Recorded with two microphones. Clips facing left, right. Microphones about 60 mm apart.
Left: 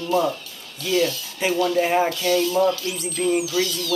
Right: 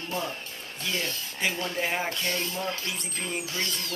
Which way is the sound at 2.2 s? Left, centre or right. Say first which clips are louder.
Left 11 dB; right.